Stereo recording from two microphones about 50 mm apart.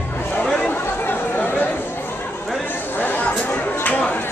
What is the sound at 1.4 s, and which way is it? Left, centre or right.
Chatter, left.